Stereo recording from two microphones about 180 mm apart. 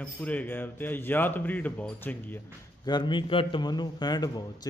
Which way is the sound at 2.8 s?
25° left (ahead or behind).